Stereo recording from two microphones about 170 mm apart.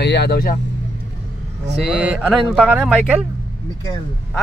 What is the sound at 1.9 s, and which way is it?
Speech, 5° right (ahead or behind).